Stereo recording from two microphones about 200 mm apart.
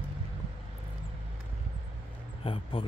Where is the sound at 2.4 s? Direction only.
25° left (ahead or behind).